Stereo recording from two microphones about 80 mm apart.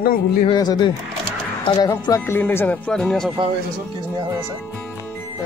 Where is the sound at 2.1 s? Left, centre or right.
Left.